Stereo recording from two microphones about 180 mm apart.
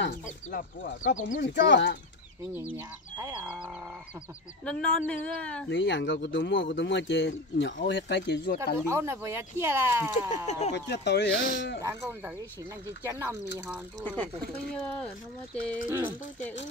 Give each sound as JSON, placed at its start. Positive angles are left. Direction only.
{"t": 0.5, "sound": "speech", "side_deg": 50}
{"t": 1.4, "sound": "speech", "side_deg": 75}
{"t": 3.2, "sound": "livestock", "side_deg": -20}
{"t": 4.6, "sound": "speech", "side_deg": 5}
{"t": 5.7, "sound": "speech", "side_deg": 90}
{"t": 7.9, "sound": "speech", "side_deg": 75}
{"t": 8.8, "sound": "speech", "side_deg": -15}
{"t": 10.3, "sound": "speech", "side_deg": 40}
{"t": 10.7, "sound": "speech", "side_deg": 70}
{"t": 11.8, "sound": "speech", "side_deg": -10}
{"t": 14.0, "sound": "speech", "side_deg": 10}
{"t": 15.9, "sound": "speech", "side_deg": -10}